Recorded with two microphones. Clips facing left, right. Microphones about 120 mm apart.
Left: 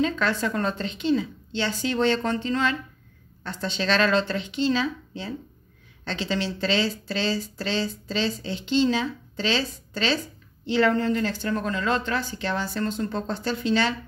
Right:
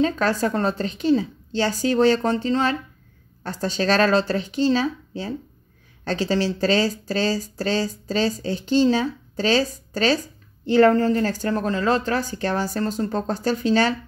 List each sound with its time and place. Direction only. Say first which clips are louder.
0.0 s speech: right 4 dB; 40° right (ahead or behind)